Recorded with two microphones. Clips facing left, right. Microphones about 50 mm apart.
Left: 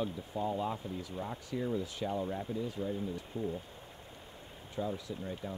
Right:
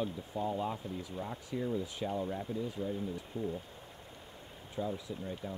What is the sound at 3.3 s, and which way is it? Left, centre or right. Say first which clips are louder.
Speech: even; left.